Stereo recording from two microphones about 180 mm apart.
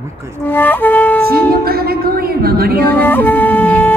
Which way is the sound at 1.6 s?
60° right (ahead or behind).